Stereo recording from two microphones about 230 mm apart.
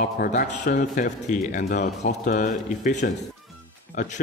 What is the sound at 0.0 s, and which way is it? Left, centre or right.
A man's voice, left.